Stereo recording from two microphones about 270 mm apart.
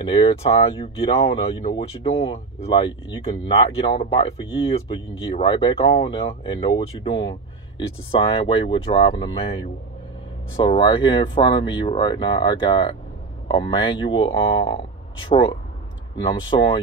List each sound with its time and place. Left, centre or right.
0.0 s speech: centre